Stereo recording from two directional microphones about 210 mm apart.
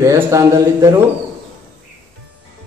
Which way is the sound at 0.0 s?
15° right (ahead or behind).